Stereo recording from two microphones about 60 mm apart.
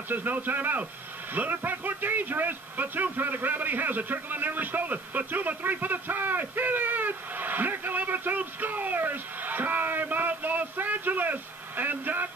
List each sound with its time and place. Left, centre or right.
0.1 s speech: right